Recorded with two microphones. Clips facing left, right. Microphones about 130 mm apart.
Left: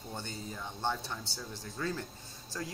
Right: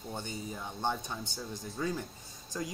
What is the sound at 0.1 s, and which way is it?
Speech, 15° right (ahead or behind).